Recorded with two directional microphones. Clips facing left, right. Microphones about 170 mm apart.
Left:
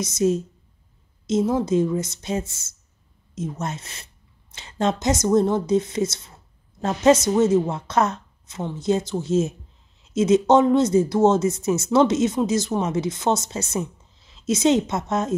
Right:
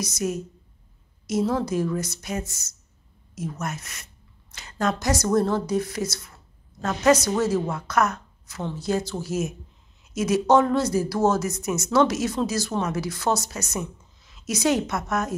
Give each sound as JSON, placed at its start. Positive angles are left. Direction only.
{"t": 0.0, "sound": "a woman's voice", "side_deg": 25}